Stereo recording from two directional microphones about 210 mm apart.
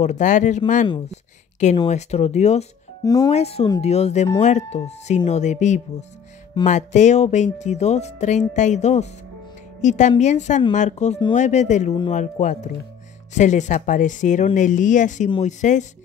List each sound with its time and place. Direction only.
0.0 s speech: 35° left (ahead or behind)
3.0 s speech: 15° left (ahead or behind)
3.3 s speech: 30° left (ahead or behind)